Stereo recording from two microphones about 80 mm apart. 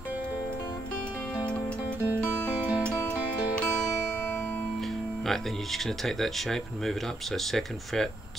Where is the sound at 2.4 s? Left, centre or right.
Centre.